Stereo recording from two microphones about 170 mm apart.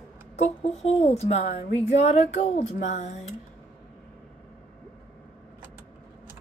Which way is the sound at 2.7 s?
45° left (ahead or behind).